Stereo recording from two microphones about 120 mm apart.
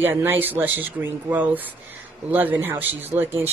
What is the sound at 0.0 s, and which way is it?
A woman's voice, 20° right (ahead or behind).